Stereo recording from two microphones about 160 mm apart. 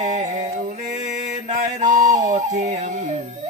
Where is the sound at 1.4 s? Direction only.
50° right (ahead or behind).